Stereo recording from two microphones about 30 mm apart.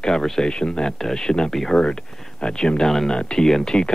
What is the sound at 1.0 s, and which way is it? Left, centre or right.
Speech, centre.